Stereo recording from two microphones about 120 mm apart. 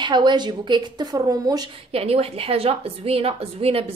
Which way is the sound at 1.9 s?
55° right (ahead or behind).